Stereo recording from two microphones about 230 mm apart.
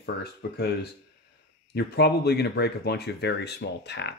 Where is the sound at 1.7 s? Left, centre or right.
Left.